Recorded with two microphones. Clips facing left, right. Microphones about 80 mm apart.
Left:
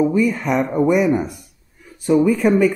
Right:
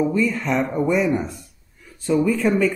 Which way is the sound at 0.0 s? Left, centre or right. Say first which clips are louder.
Left 3 dB; centre.